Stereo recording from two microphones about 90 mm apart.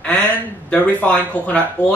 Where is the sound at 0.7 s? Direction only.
15° left (ahead or behind).